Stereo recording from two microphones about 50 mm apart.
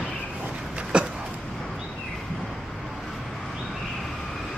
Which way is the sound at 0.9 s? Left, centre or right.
Centre.